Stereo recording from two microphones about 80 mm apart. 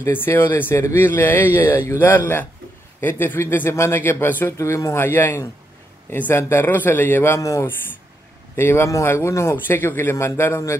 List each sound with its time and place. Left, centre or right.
0.0 s speech: left
4.5 s a man's voice: left
5.0 s speech: left
7.3 s a man's voice: left
8.5 s a man's voice: left